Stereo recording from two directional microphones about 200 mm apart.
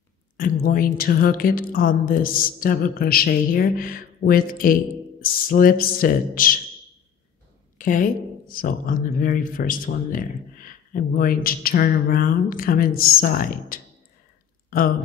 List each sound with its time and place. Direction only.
0.4 s a woman's voice: 45° left (ahead or behind)
7.7 s a woman's voice: 40° left (ahead or behind)